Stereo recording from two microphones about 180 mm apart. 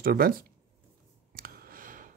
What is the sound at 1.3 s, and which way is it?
Clicking, 55° right (ahead or behind).